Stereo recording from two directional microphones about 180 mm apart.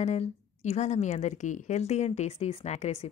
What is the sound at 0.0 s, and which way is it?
A woman's voice, 40° left (ahead or behind).